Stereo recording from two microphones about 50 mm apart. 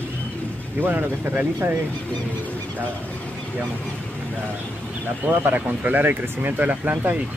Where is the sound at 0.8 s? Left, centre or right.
Right.